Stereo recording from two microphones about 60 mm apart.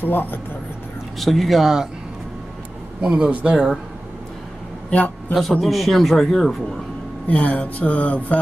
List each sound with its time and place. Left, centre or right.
0.0 s speech: left
1.2 s speech: centre
3.0 s a man's voice: centre
5.3 s speech: centre
7.2 s a sound: left